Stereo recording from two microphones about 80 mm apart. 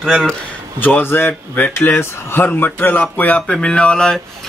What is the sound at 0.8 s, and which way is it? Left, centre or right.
Speech, left.